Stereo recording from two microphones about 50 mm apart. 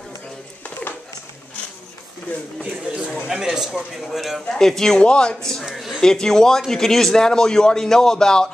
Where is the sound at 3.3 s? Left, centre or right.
Centre.